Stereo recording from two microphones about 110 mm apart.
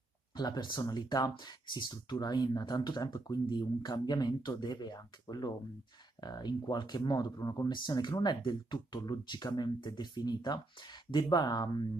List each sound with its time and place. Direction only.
0.4 s speech: 40° left (ahead or behind)